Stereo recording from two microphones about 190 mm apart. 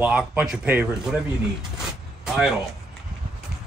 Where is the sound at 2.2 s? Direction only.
5° right (ahead or behind).